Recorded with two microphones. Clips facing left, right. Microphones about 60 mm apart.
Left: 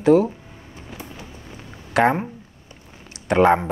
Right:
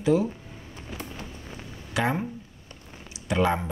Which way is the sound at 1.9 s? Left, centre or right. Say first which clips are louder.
Left 9 dB; left.